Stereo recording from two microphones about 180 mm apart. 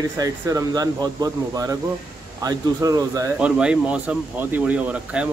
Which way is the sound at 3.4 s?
5° right (ahead or behind).